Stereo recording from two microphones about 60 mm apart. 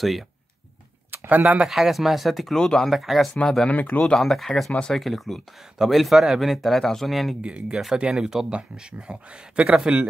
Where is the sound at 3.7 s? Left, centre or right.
Left.